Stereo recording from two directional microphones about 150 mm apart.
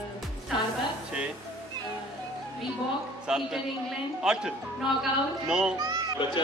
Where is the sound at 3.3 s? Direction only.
5° right (ahead or behind).